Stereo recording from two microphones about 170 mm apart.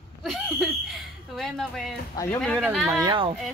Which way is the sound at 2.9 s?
25° right (ahead or behind).